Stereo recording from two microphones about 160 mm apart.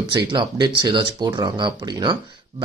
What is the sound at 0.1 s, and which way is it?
Speech, 30° right (ahead or behind).